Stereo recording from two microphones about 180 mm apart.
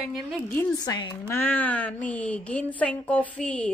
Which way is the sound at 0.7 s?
20° left (ahead or behind).